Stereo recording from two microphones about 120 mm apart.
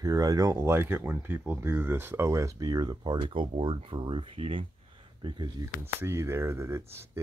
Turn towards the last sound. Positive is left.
turn(degrees=-20)  # may be behind; listen again after turning